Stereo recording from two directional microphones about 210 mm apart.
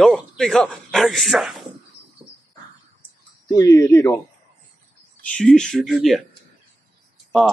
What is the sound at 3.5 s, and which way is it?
Speech, 15° left (ahead or behind).